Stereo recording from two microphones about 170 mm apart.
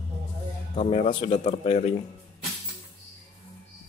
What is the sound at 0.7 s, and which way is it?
Speech, 35° left (ahead or behind).